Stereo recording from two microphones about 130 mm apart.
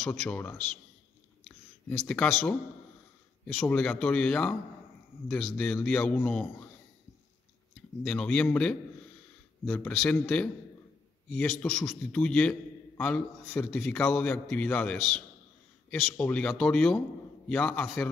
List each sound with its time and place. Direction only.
0.0 s a man's voice: 5° left (ahead or behind)
1.4 s a sound: 10° left (ahead or behind)
3.4 s a man's voice: 10° left (ahead or behind)
8.0 s a man's voice: 10° left (ahead or behind)